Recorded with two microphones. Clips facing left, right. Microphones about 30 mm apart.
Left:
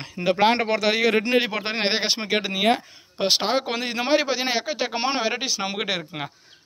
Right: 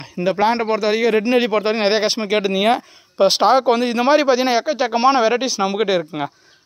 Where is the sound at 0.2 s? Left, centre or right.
Left.